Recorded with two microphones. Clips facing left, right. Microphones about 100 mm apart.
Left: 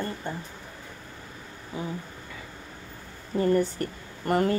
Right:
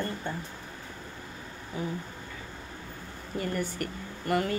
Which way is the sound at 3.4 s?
35° left (ahead or behind).